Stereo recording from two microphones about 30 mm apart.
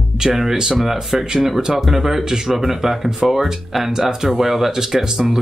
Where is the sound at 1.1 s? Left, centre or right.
Centre.